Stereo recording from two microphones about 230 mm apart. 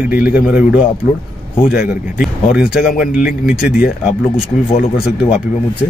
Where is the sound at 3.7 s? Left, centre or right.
Left.